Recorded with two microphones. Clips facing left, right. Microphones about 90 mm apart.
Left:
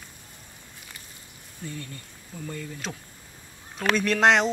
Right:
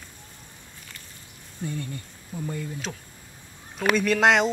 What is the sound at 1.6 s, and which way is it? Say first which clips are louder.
Speech: right 5 dB; 20° right (ahead or behind).